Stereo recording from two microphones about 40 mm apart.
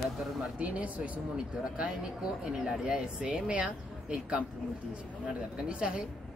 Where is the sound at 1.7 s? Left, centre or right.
Right.